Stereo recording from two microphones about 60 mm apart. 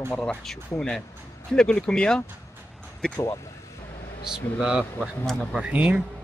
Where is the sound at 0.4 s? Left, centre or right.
Centre.